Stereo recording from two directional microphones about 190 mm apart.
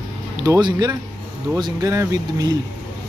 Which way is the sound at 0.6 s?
25° right (ahead or behind).